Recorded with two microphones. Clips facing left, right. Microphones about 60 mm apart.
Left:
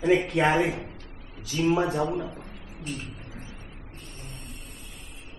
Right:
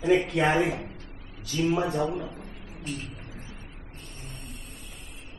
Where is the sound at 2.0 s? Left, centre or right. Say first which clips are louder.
Left 1 dB; left.